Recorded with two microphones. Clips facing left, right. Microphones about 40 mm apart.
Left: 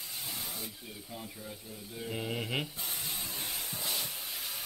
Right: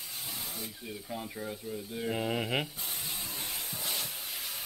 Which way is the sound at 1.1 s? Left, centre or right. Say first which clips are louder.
Right 7 dB; right.